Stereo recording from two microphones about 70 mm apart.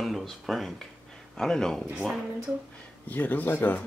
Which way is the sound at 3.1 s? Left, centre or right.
Left.